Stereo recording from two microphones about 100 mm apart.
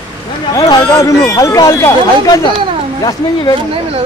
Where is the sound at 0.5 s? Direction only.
40° left (ahead or behind).